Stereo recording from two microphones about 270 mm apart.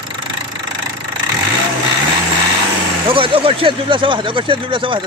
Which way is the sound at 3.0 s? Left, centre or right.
Centre.